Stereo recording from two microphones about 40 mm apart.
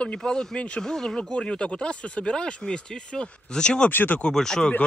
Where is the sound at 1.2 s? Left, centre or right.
Left.